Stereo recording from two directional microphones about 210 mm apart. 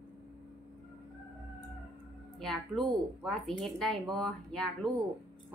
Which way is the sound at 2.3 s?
Centre (ahead or behind).